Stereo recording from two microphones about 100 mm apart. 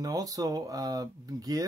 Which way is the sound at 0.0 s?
35° right (ahead or behind).